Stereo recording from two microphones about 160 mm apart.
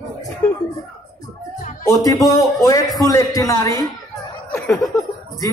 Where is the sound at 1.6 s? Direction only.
55° left (ahead or behind).